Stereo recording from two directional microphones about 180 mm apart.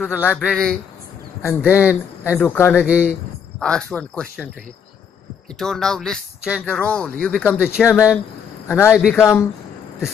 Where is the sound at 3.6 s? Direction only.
5° left (ahead or behind).